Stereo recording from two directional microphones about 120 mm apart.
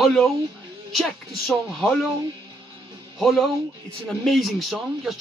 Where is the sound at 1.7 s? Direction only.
Centre (ahead or behind).